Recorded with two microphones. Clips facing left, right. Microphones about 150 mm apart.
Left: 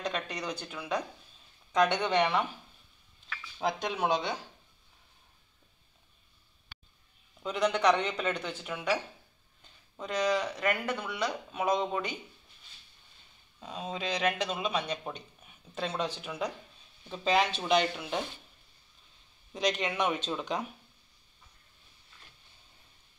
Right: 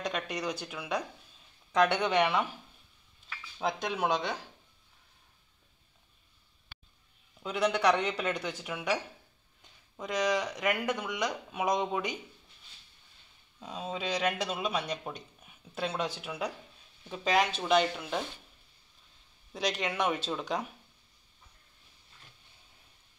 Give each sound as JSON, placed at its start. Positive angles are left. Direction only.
{"t": 0.0, "sound": "speech", "side_deg": -10}
{"t": 3.5, "sound": "speech", "side_deg": 0}
{"t": 7.4, "sound": "speech", "side_deg": -10}
{"t": 13.6, "sound": "speech", "side_deg": -5}
{"t": 19.6, "sound": "speech", "side_deg": -5}